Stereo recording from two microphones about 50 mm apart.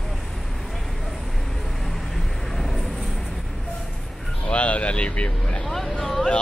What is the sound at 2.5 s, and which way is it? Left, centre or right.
Vehicle, centre.